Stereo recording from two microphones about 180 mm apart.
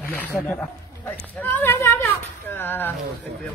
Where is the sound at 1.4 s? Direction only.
15° left (ahead or behind).